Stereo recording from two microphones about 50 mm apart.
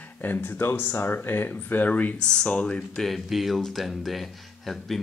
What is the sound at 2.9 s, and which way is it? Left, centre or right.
Speech, centre.